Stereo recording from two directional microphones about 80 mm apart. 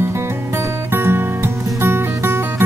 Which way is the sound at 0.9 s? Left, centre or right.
Right.